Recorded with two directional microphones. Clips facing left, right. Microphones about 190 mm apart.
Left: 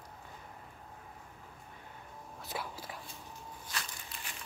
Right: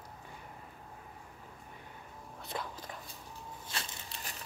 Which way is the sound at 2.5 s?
5° left (ahead or behind).